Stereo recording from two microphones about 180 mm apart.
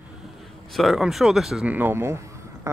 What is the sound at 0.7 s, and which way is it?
Speech, centre (ahead or behind).